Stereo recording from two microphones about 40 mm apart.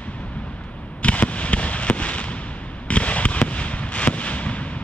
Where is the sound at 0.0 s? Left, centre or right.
Left.